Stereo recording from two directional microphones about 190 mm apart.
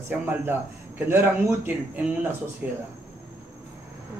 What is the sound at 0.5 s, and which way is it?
Speech, 10° right (ahead or behind).